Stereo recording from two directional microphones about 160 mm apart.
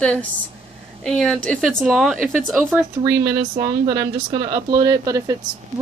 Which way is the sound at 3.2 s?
20° right (ahead or behind).